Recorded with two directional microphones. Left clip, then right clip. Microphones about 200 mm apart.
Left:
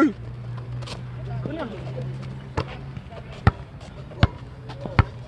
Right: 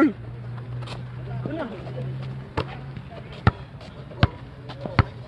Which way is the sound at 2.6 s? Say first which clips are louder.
Even; centre (ahead or behind).